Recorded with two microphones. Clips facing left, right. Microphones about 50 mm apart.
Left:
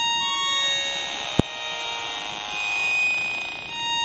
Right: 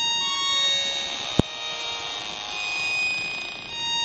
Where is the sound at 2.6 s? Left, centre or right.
Left.